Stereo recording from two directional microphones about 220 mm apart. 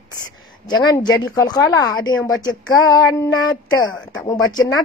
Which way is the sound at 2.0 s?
20° left (ahead or behind).